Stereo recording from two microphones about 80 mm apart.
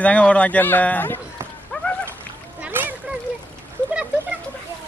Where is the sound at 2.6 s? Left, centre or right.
Right.